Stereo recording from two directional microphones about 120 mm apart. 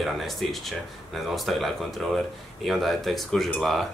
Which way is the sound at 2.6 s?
Centre (ahead or behind).